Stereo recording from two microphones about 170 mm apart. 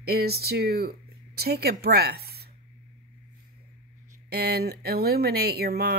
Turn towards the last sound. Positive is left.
turn(degrees=-65)  # may be behind; listen again after turning